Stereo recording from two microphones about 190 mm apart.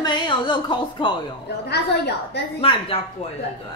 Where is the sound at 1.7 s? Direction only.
60° left (ahead or behind).